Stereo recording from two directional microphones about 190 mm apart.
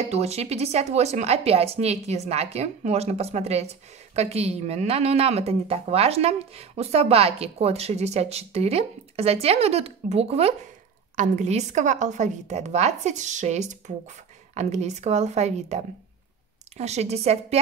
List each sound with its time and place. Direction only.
0.1 s speech: 35° right (ahead or behind)